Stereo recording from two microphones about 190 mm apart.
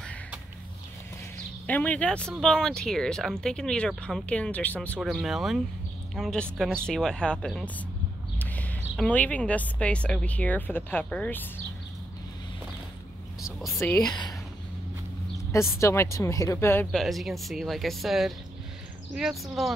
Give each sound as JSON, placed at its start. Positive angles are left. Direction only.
{"t": 1.7, "sound": "speech", "side_deg": 5}
{"t": 13.7, "sound": "speech", "side_deg": 15}
{"t": 15.8, "sound": "speech", "side_deg": 15}
{"t": 16.9, "sound": "speech", "side_deg": 0}